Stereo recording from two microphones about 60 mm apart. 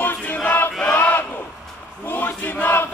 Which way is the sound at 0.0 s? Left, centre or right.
Left.